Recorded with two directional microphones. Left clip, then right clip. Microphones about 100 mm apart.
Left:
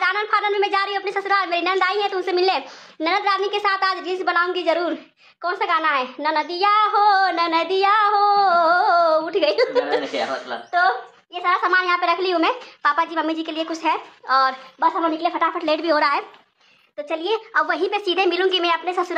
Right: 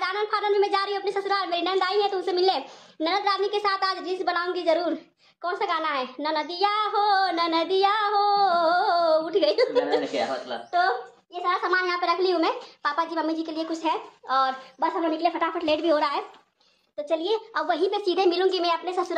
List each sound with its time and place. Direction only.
0.0 s speech: 10° left (ahead or behind)
11.4 s speech: 20° left (ahead or behind)
15.0 s speech: 5° right (ahead or behind); by 19.1 s 10° left (ahead or behind)